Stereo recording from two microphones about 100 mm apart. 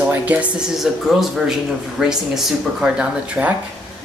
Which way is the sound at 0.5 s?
5° right (ahead or behind).